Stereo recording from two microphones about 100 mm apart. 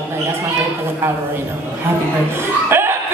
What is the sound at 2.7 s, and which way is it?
Cough, 25° right (ahead or behind).